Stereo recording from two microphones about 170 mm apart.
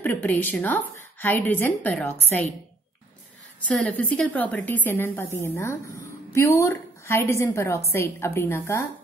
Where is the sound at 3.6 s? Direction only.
5° left (ahead or behind).